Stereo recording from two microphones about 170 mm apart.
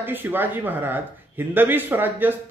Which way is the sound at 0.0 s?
10° right (ahead or behind).